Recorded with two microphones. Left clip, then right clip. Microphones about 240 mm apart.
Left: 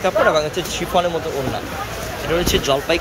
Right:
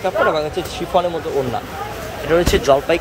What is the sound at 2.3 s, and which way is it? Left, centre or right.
Speech, right.